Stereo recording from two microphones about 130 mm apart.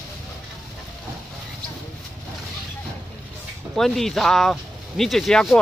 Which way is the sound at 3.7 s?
Centre (ahead or behind).